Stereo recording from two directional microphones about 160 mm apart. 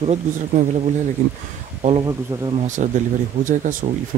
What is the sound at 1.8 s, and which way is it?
Speech, 40° right (ahead or behind).